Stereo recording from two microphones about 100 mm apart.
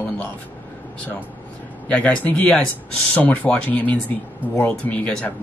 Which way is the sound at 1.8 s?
15° left (ahead or behind).